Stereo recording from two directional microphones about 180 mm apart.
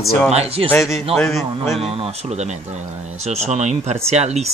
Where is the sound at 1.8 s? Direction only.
35° right (ahead or behind).